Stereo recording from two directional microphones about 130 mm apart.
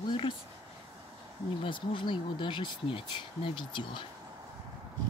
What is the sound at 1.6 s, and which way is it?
Speech, 40° left (ahead or behind).